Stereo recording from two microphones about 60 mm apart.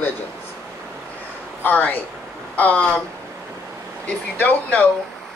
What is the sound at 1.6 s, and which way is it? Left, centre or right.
Speech, left.